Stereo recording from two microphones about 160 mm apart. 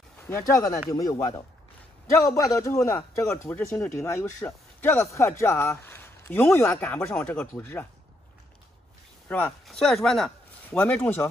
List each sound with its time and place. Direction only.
0.3 s a man's voice: 20° left (ahead or behind)
2.2 s a man's voice: 20° left (ahead or behind)
9.3 s speech: 5° left (ahead or behind)